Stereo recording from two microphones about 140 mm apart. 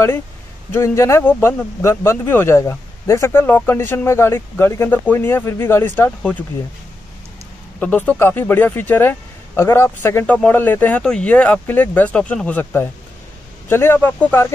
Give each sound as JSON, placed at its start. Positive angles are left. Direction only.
{"t": 0.7, "sound": "a man's voice", "side_deg": 20}
{"t": 7.8, "sound": "a man's voice", "side_deg": 10}